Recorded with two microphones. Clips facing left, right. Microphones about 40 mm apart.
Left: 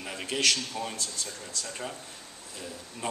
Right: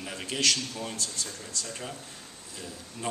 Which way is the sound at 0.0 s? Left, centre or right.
Centre.